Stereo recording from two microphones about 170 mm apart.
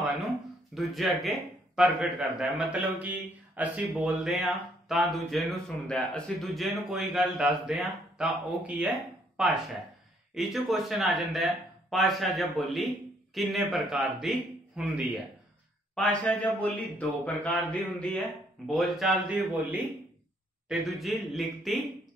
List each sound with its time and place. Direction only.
0.7 s speech: centre (ahead or behind)
15.9 s speech: 5° left (ahead or behind)